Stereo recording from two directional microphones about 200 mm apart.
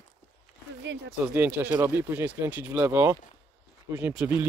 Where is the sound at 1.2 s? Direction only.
10° right (ahead or behind).